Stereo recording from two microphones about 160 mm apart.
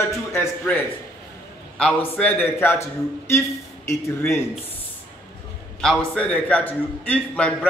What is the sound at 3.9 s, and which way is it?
Speech, 15° left (ahead or behind).